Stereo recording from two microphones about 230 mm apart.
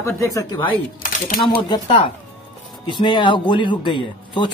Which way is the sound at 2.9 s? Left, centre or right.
Left.